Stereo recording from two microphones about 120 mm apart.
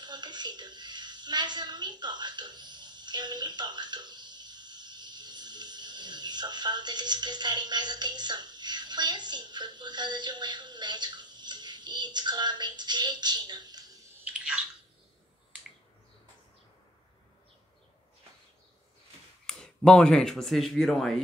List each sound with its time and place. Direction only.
0.0 s a woman's voice: 35° right (ahead or behind)
14.2 s bathtub: 10° right (ahead or behind)
19.4 s speech: 5° left (ahead or behind)